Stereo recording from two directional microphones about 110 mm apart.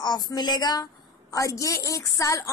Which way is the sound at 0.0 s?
40° left (ahead or behind).